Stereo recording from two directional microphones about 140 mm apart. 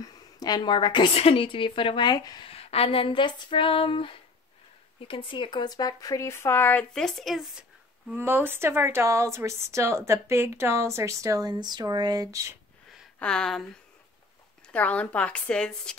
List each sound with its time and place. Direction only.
0.0 s a woman's voice: 30° left (ahead or behind)
2.5 s a woman's voice: 45° left (ahead or behind); by 7.6 s centre (ahead or behind)
8.1 s a woman's voice: 15° right (ahead or behind)
13.2 s speech: 5° left (ahead or behind)
14.7 s speech: 10° left (ahead or behind)